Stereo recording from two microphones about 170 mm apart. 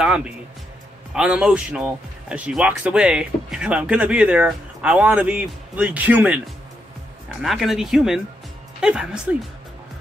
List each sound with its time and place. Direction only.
0.0 s music: 5° right (ahead or behind)
1.1 s speech: 5° right (ahead or behind)